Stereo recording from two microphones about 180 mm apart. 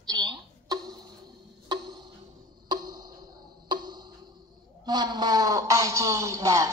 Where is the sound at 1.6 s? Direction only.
25° right (ahead or behind).